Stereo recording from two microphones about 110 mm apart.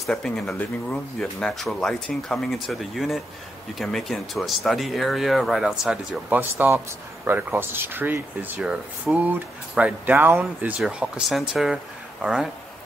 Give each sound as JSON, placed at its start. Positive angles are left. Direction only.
{"t": 0.0, "sound": "speech", "side_deg": 5}
{"t": 6.5, "sound": "a man's voice", "side_deg": -25}
{"t": 8.5, "sound": "speech", "side_deg": -5}